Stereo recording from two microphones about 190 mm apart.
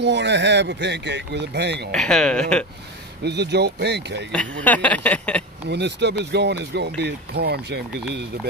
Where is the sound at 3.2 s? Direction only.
60° right (ahead or behind).